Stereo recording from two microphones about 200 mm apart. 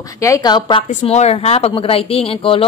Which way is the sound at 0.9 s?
35° left (ahead or behind).